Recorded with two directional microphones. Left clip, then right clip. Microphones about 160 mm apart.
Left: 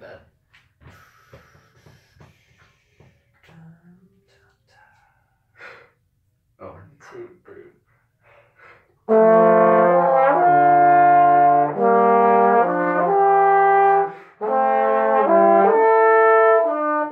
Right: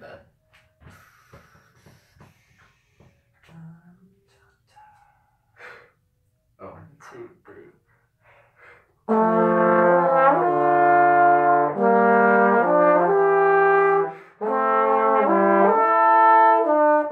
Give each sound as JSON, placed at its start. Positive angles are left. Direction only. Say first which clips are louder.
{"t": 9.0, "sound": "brass instrument", "louder": "left 6 dB", "side_deg": -20}